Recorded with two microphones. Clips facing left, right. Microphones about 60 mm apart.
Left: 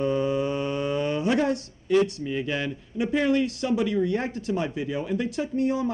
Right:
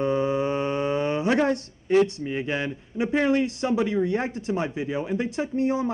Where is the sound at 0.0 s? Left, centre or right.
Right.